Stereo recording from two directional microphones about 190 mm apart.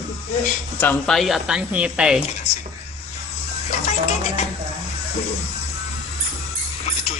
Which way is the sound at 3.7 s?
35° left (ahead or behind).